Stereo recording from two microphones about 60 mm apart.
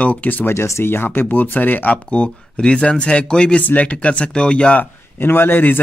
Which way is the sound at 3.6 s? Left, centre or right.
Left.